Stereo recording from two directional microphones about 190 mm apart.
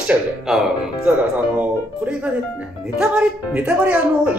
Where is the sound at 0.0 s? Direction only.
5° right (ahead or behind).